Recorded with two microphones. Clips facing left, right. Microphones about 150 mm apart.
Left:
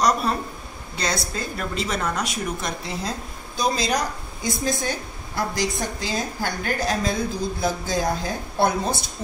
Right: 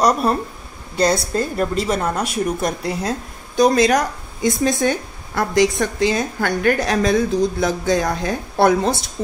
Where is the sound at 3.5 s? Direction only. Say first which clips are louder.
Right 9 dB; 50° right (ahead or behind).